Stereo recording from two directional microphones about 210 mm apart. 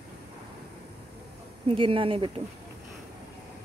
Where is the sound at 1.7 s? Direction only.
25° right (ahead or behind).